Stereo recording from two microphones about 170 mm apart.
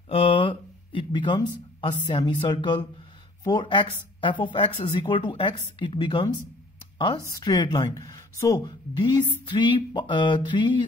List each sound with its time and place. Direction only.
0.1 s speech: 30° left (ahead or behind)